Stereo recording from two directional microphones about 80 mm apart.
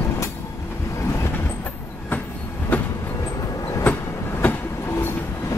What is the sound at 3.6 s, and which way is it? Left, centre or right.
Train, left.